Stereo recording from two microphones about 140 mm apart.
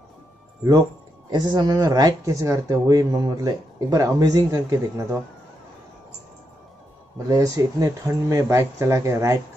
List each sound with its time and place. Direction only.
1.3 s speech: 30° right (ahead or behind)
7.2 s speech: 25° right (ahead or behind)